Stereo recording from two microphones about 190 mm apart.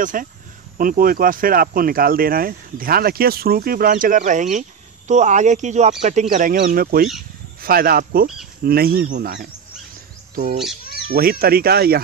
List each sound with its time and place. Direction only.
0.0 s speech: 45° right (ahead or behind)
10.3 s speech: 40° right (ahead or behind)
11.1 s speech: 55° right (ahead or behind)